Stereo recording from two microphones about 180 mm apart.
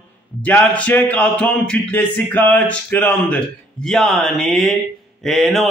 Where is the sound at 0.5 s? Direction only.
10° left (ahead or behind).